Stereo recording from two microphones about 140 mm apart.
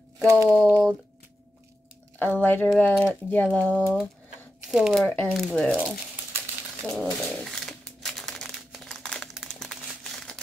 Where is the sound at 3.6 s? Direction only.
10° right (ahead or behind); by 5.7 s 5° left (ahead or behind).